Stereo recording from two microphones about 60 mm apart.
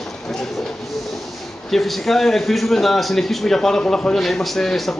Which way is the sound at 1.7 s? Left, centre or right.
Centre.